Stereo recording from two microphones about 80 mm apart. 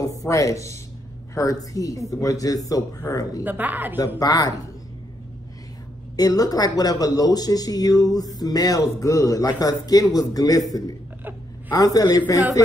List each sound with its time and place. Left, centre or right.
0.0 s speech: left
3.4 s speech: right
4.2 s speech: left
6.1 s speech: left
11.7 s speech: left